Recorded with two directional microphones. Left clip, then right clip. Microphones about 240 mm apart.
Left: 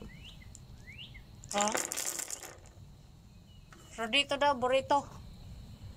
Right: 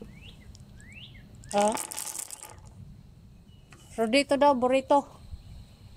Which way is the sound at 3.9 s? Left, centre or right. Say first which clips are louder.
Right 6 dB; right.